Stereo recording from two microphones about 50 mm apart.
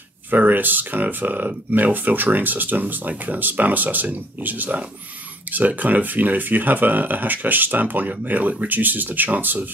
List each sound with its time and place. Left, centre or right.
0.4 s speech: right